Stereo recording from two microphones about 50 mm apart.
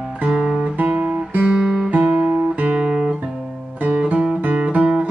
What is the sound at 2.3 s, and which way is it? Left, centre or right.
Guitar, right.